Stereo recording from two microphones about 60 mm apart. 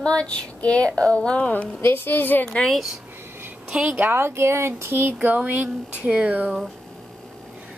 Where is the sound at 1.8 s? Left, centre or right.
Left.